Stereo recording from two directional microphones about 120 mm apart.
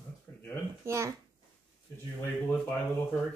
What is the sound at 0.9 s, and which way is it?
Speech, 25° right (ahead or behind).